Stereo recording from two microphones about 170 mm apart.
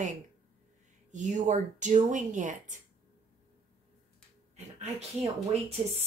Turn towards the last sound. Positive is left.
turn(degrees=-40)  # may be behind; listen again after turning